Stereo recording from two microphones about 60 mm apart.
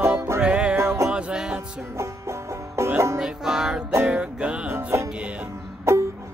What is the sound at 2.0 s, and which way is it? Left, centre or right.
Music, right.